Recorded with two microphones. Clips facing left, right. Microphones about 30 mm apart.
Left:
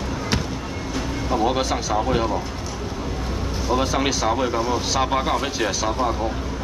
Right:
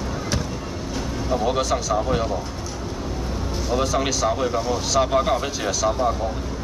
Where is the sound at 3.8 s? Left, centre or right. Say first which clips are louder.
Right 1 dB; left.